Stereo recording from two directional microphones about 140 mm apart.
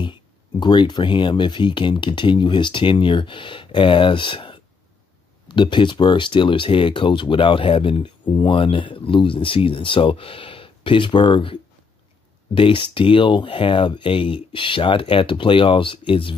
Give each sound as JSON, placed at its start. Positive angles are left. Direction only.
{"t": 0.0, "sound": "speech", "side_deg": 35}